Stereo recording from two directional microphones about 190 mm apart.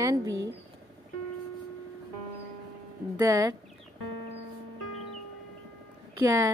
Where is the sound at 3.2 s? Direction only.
15° right (ahead or behind).